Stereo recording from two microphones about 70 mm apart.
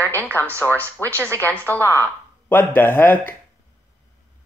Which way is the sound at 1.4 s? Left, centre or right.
Left.